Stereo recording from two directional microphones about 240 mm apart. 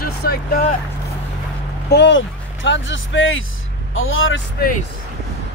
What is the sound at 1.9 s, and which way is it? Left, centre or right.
Speech, left.